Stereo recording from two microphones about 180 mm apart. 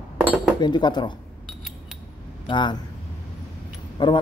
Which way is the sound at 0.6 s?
25° left (ahead or behind).